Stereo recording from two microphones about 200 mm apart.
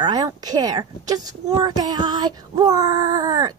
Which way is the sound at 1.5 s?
20° right (ahead or behind).